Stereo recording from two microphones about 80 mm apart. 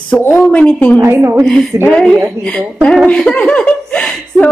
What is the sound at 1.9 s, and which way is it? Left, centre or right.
Speech, centre.